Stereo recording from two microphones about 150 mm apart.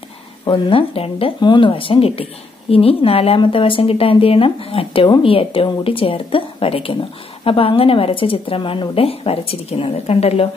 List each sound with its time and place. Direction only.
0.5 s a woman's voice: 35° left (ahead or behind)